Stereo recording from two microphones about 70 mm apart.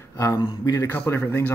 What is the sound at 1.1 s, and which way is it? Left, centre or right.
Speech, left.